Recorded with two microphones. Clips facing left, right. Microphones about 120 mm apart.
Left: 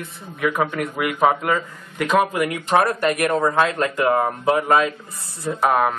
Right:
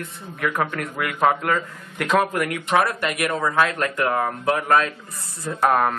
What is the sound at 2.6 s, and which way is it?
Speech, 40° left (ahead or behind).